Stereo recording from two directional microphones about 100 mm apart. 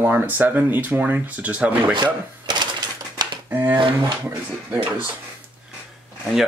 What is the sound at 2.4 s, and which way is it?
Cash register, 50° right (ahead or behind).